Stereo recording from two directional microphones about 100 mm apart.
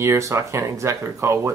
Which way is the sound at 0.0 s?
30° right (ahead or behind).